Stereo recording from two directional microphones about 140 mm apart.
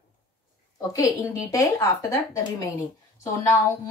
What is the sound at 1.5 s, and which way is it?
A woman's voice, 25° left (ahead or behind).